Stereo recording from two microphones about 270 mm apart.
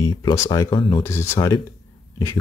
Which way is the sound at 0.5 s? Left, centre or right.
Centre.